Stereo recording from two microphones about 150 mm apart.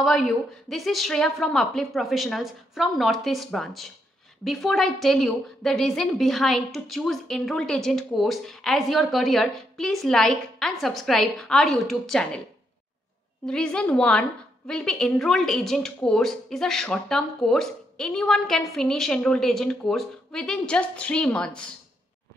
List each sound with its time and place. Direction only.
0.0 s a woman's voice: centre (ahead or behind)
13.5 s a woman's voice: 5° left (ahead or behind)